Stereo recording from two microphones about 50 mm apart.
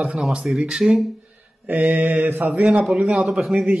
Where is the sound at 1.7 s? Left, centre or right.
Right.